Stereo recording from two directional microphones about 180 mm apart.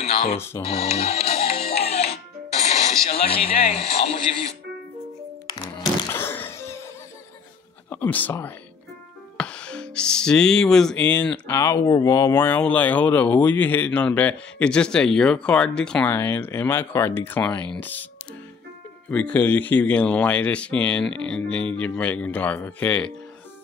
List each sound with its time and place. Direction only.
0.0 s a sound: 35° left (ahead or behind)
0.7 s music: 35° left (ahead or behind)
5.5 s music: 15° left (ahead or behind)
7.9 s speech: 10° left (ahead or behind)
19.0 s speech: 10° left (ahead or behind)